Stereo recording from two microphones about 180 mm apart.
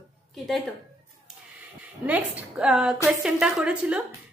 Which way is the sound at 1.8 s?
10° right (ahead or behind).